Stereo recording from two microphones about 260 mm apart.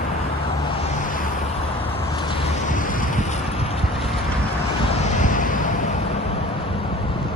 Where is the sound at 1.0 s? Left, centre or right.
Left.